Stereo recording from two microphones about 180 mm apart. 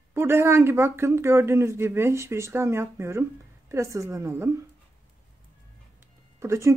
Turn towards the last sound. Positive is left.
turn(degrees=-15)  # may be behind; listen again after turning